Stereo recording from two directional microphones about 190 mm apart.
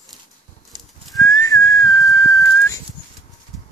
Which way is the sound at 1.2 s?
20° left (ahead or behind).